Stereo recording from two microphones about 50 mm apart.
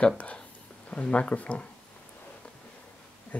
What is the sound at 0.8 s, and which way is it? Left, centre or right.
Speech, left.